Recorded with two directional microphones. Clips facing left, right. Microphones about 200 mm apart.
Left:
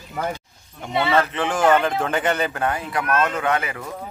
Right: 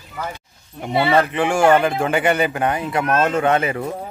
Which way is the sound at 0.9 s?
35° right (ahead or behind).